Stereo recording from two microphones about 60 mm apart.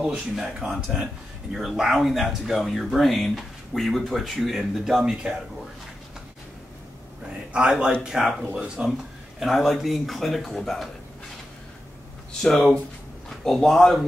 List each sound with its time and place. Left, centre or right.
0.0 s speech: centre
7.5 s speech: centre
9.4 s speech: centre
12.3 s speech: centre